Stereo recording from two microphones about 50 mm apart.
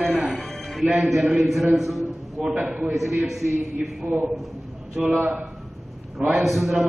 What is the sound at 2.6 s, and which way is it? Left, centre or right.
Speech, centre.